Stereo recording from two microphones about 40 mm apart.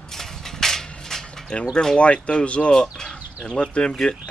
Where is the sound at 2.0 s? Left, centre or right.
Left.